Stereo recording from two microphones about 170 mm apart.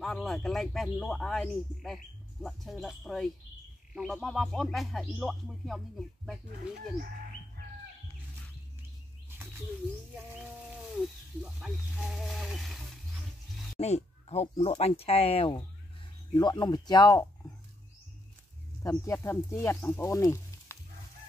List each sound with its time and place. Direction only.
0.0 s speech: centre (ahead or behind)
10.1 s speech: 10° right (ahead or behind)
13.7 s speech: 40° left (ahead or behind); by 17.3 s 20° left (ahead or behind)
18.8 s speech: 15° left (ahead or behind)